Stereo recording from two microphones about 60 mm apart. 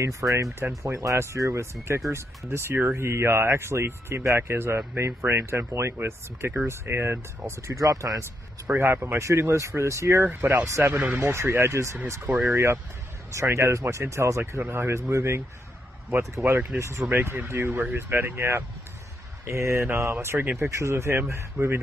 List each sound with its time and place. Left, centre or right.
0.0 s speech: right
7.8 s speech: right
8.7 s speech: right
10.2 s speech: right
10.5 s speech: right
14.6 s speech: right
16.7 s speech: right
17.1 s speech: right